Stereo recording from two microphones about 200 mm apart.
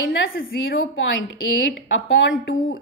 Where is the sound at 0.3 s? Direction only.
75° left (ahead or behind).